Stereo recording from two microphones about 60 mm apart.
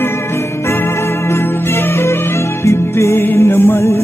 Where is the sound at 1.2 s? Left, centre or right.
Left.